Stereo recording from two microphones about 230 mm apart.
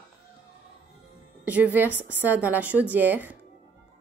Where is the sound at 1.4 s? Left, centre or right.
Centre.